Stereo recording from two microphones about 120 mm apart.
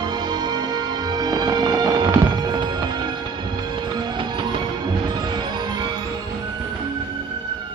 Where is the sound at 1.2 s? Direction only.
35° right (ahead or behind).